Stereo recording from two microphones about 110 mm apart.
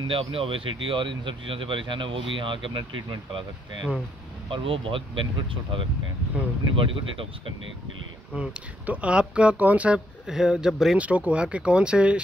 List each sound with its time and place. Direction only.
0.1 s speech: 55° right (ahead or behind)
4.5 s speech: 55° right (ahead or behind)
8.4 s speech: 15° right (ahead or behind)